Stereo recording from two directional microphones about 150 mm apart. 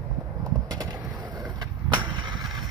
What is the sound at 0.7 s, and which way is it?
Bird, 25° right (ahead or behind).